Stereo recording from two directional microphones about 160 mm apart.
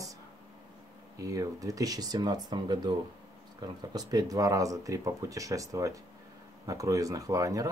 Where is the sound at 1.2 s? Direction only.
20° right (ahead or behind).